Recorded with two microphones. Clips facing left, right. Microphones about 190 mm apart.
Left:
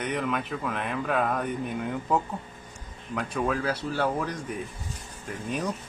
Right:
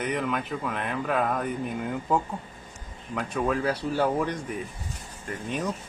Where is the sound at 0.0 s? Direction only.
Centre (ahead or behind).